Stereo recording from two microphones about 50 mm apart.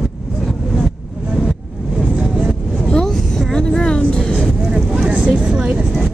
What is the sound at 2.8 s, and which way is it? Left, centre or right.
Vehicle, centre.